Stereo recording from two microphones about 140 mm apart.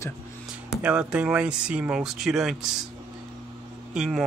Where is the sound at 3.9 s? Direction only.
5° right (ahead or behind).